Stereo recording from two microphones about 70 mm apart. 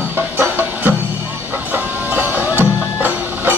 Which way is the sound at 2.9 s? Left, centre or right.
Right.